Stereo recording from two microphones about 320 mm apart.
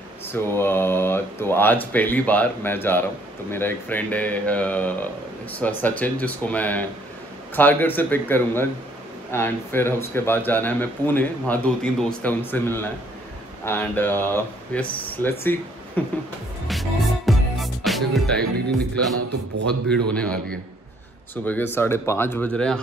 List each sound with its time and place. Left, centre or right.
0.3 s speech: centre
17.3 s music: centre
19.1 s a man's voice: right
19.9 s speech: centre